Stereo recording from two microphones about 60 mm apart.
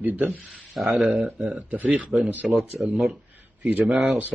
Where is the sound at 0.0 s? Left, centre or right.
Right.